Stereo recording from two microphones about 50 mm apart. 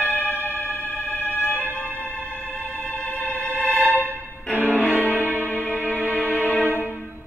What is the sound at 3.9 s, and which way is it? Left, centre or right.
Music, right.